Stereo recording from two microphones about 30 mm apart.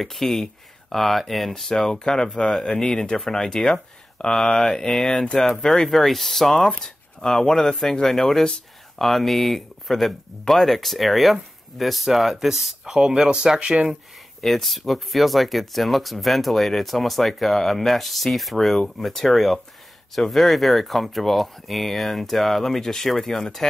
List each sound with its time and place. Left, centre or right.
0.0 s speech: centre
1.9 s speech: left
4.6 s speech: centre
12.8 s speech: right
14.4 s speech: centre